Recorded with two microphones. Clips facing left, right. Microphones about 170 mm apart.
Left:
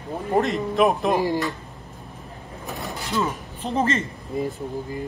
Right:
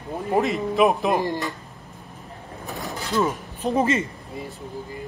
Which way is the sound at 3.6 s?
15° right (ahead or behind).